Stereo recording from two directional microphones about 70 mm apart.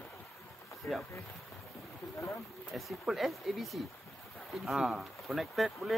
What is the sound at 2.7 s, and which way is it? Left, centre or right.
Speech, centre.